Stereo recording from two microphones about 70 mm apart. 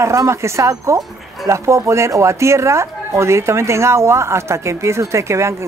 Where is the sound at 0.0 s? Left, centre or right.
Right.